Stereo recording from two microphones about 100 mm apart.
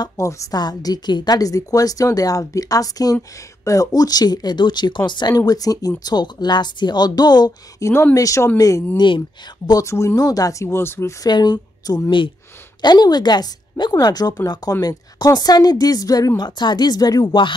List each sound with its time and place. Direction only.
0.0 s a woman's voice: 30° left (ahead or behind)
7.8 s a woman's voice: 30° left (ahead or behind)
8.9 s a woman's voice: 55° left (ahead or behind)
9.7 s speech: 35° left (ahead or behind)
11.2 s a woman's voice: 45° left (ahead or behind)